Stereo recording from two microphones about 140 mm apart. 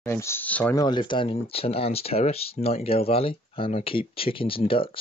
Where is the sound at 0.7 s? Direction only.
30° left (ahead or behind).